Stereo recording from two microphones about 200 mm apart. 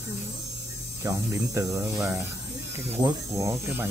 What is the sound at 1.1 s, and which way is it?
Speech, 15° right (ahead or behind).